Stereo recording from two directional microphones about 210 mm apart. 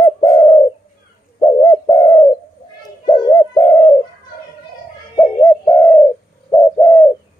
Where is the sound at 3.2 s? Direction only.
15° left (ahead or behind).